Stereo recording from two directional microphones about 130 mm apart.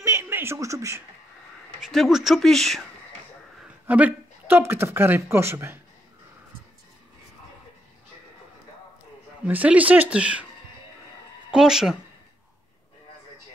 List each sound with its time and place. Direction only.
0.0 s a sound: 20° right (ahead or behind)
1.9 s speech: centre (ahead or behind)
3.6 s speech: 10° right (ahead or behind)
9.5 s speech: 10° right (ahead or behind)
11.5 s speech: 5° right (ahead or behind)